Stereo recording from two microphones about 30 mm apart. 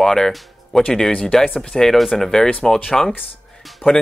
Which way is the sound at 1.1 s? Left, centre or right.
Left.